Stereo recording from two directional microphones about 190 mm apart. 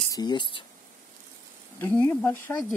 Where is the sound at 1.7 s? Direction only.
10° left (ahead or behind).